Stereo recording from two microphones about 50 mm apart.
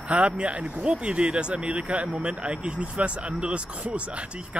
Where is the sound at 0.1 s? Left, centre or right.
Right.